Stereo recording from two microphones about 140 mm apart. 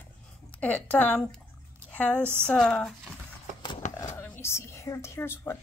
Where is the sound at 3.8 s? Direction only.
60° left (ahead or behind).